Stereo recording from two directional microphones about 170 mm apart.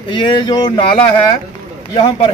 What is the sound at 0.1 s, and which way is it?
Speech, 30° left (ahead or behind).